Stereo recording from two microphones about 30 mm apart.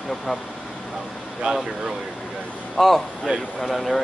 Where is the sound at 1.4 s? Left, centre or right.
Right.